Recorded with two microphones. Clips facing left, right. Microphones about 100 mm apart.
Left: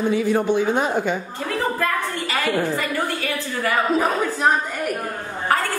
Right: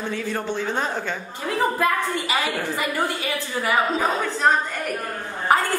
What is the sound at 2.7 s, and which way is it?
A woman's voice, 15° right (ahead or behind).